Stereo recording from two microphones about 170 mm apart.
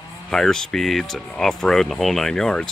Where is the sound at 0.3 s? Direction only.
5° left (ahead or behind).